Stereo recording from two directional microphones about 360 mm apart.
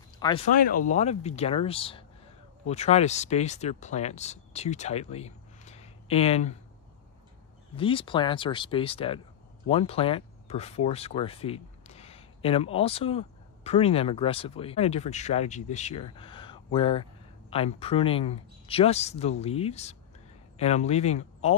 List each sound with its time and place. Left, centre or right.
0.2 s speech: centre
7.7 s speech: centre